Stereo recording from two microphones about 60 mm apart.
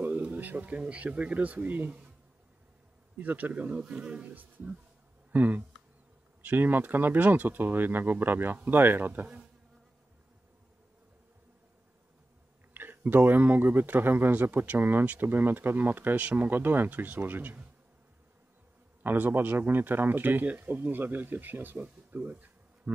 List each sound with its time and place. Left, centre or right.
0.0 s speech: right
3.2 s speech: right
12.7 s speech: right
19.0 s speech: right